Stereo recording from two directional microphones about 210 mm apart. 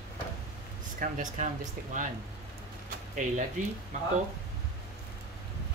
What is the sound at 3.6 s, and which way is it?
Speech, 35° right (ahead or behind).